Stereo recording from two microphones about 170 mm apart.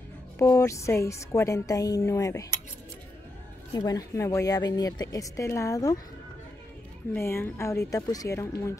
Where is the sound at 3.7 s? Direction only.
20° left (ahead or behind).